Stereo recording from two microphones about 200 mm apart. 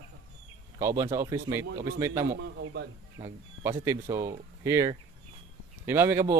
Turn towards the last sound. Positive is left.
turn(degrees=-15)  # may be behind; listen again after turning